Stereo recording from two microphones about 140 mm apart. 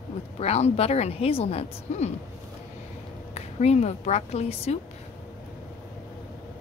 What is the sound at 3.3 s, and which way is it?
Speech, 50° left (ahead or behind).